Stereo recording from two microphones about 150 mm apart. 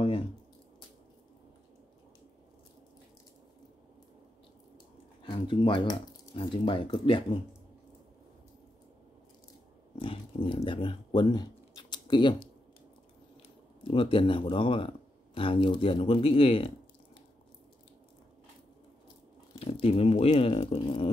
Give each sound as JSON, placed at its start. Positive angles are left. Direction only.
{"t": 5.2, "sound": "speech", "side_deg": 35}
{"t": 9.9, "sound": "dog", "side_deg": 35}
{"t": 13.8, "sound": "speech", "side_deg": 35}
{"t": 19.6, "sound": "speech", "side_deg": 40}